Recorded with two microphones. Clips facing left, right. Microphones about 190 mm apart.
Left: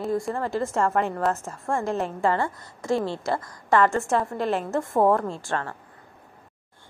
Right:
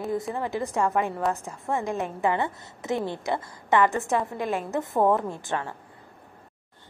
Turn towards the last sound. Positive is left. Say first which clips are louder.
# left 1 dB
turn(degrees=-15)  # may be behind; listen again after turning